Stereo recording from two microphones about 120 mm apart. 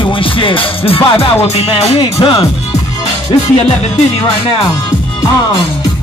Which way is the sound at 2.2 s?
40° left (ahead or behind).